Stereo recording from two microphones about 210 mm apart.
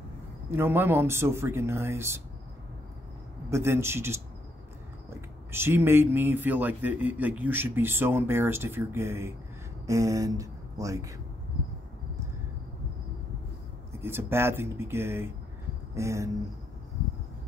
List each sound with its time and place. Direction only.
0.5 s a man's voice: 10° right (ahead or behind)
3.4 s a man's voice: 10° right (ahead or behind)
5.5 s a man's voice: 10° right (ahead or behind)
13.9 s a man's voice: 10° right (ahead or behind)